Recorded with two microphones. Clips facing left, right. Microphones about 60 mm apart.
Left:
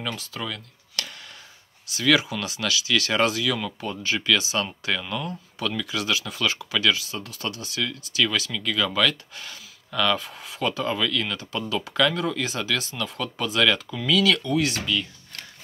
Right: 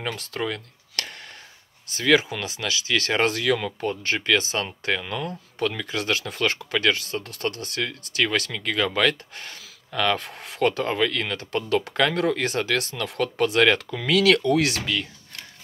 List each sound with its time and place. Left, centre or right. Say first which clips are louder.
0.1 s speech: right 4 dB; right
13.7 s speech: right 1 dB; right